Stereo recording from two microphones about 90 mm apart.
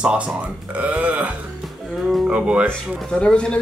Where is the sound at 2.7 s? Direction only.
10° left (ahead or behind).